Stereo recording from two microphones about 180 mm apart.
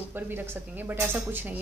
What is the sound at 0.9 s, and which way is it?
Speech, 15° right (ahead or behind).